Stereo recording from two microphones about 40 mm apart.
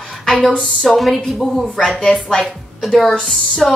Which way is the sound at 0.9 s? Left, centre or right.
Centre.